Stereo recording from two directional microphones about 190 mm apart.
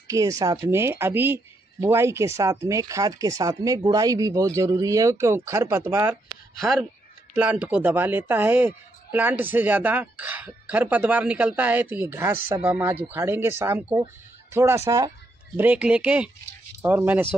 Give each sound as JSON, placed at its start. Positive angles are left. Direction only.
{"t": 0.1, "sound": "speech", "side_deg": -15}
{"t": 7.3, "sound": "speech", "side_deg": -5}